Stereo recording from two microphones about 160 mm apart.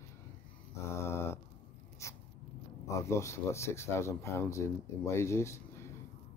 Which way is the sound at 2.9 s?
20° left (ahead or behind).